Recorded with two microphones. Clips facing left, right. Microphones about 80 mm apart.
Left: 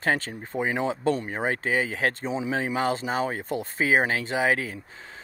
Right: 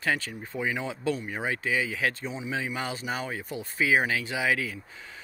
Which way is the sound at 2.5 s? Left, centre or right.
Left.